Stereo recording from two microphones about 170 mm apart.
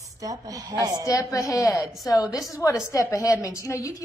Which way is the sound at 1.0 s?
20° left (ahead or behind).